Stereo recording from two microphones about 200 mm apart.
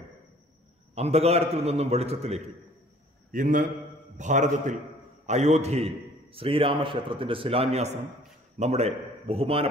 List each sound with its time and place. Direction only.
0.9 s a man's voice: 30° right (ahead or behind)